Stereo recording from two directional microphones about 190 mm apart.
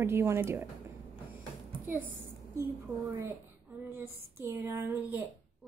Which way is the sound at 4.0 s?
15° right (ahead or behind).